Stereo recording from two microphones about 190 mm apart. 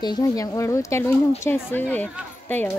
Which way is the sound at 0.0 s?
20° left (ahead or behind).